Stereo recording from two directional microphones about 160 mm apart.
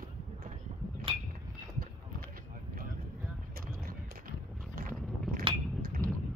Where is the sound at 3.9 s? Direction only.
65° right (ahead or behind).